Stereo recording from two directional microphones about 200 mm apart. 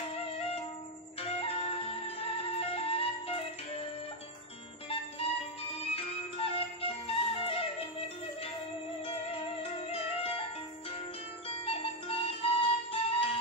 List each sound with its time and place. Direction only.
1.2 s music: 30° left (ahead or behind)
5.8 s music: 30° left (ahead or behind)
9.0 s music: 30° left (ahead or behind)
11.4 s music: 30° left (ahead or behind)